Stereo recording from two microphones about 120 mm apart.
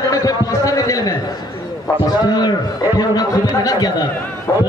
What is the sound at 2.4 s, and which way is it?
A man's voice, 35° left (ahead or behind).